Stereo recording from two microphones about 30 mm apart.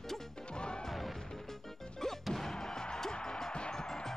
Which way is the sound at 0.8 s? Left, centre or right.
Centre.